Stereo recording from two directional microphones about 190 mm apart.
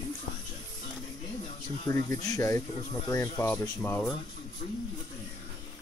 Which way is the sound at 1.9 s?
15° left (ahead or behind).